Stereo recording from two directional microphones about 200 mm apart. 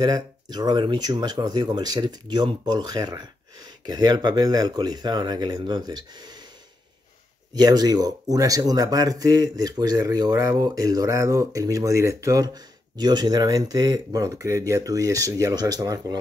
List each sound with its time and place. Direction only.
0.0 s speech: 20° right (ahead or behind)
7.5 s speech: 20° right (ahead or behind)